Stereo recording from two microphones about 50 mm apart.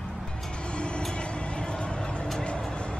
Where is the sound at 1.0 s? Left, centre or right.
Centre.